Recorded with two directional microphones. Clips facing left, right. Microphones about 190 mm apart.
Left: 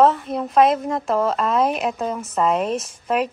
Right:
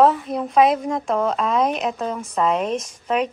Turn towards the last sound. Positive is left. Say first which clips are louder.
# even
turn(degrees=5)  # may be behind; listen again after turning